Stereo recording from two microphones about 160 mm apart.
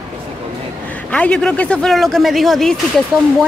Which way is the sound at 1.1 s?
5° left (ahead or behind).